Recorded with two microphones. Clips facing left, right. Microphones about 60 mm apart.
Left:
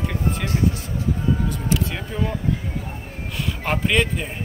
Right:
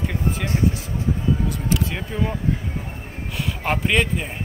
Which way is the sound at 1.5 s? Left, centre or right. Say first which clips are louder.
Even; centre.